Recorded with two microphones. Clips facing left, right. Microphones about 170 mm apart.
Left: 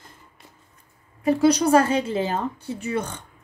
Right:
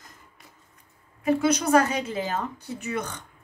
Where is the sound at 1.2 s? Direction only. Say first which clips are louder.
Left 4 dB; 35° left (ahead or behind).